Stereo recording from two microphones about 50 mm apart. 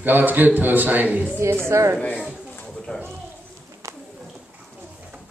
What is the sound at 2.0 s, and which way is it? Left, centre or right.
Speech, left.